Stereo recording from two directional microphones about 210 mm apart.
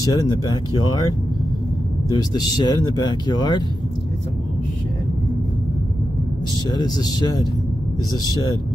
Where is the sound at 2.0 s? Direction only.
20° left (ahead or behind).